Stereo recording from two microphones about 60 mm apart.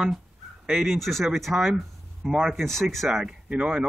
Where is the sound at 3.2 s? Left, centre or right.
Centre.